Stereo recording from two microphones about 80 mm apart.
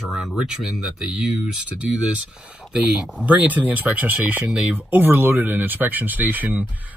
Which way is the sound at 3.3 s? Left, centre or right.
Centre.